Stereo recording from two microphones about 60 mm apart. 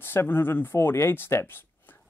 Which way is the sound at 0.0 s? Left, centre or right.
Left.